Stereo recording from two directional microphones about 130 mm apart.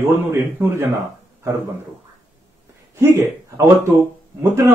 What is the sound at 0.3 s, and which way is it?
Speech, 20° right (ahead or behind).